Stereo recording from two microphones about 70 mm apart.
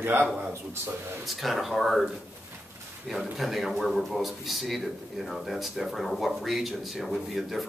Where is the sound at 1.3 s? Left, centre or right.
Centre.